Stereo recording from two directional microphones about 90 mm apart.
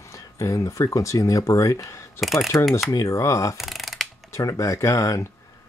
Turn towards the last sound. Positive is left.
turn(degrees=35)  # may be behind; listen again after turning